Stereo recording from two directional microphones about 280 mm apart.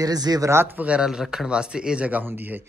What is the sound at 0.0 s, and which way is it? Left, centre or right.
Speech, centre.